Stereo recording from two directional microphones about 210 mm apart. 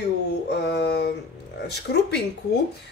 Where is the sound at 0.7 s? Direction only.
50° left (ahead or behind).